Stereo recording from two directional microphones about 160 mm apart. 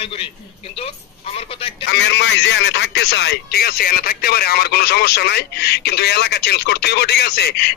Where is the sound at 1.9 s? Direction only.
90° left.